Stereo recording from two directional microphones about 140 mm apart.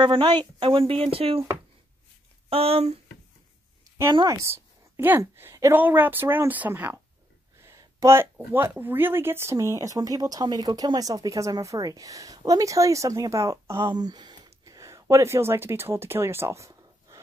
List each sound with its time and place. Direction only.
0.0 s speech: 35° right (ahead or behind)
2.5 s speech: 45° right (ahead or behind)
4.1 s speech: 30° right (ahead or behind)
4.4 s a woman's voice: 20° right (ahead or behind)